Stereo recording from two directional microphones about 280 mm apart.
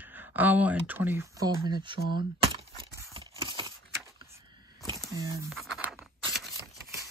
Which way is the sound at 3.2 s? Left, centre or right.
Centre.